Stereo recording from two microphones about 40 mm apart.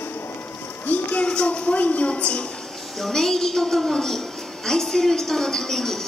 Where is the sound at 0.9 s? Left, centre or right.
Left.